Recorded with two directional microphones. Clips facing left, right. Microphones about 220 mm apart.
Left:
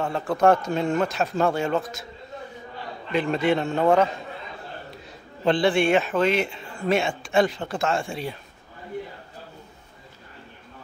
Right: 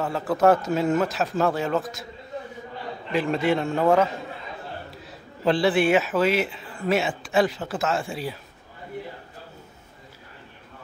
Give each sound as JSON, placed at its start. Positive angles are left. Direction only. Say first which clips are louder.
{"t": 0.0, "sound": "a man's voice", "louder": "even", "side_deg": -5}
{"t": 3.1, "sound": "a man's voice", "louder": "even", "side_deg": 0}